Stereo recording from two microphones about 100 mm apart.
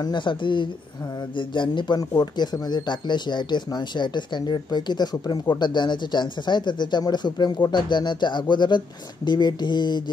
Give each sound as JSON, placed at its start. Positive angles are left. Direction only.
{"t": 0.0, "sound": "speech", "side_deg": 50}